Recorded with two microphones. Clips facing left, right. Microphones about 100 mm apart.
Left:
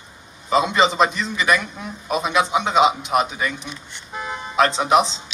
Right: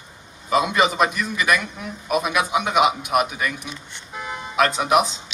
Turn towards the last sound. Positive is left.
turn(degrees=25)  # may be behind; listen again after turning